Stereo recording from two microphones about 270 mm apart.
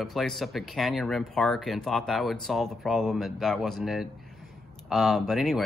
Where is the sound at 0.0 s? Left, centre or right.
Centre.